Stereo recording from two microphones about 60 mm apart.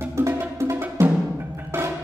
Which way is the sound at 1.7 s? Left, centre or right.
Right.